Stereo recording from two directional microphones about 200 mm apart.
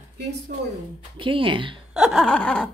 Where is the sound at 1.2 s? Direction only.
25° right (ahead or behind).